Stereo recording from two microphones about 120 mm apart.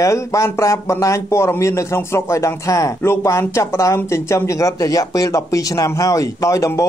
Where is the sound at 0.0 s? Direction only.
25° left (ahead or behind).